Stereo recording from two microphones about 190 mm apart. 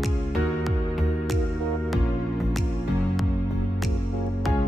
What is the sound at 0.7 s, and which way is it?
Music, centre (ahead or behind).